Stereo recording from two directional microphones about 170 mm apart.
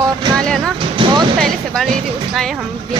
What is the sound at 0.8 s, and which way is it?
Music, 30° right (ahead or behind).